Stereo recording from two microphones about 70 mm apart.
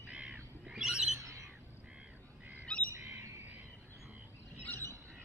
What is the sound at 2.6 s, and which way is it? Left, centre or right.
Bird, centre.